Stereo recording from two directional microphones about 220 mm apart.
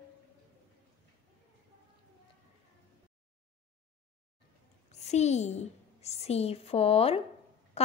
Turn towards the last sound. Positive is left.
turn(degrees=25)  # may be behind; listen again after turning